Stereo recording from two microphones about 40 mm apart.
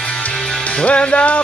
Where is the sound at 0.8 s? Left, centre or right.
Left.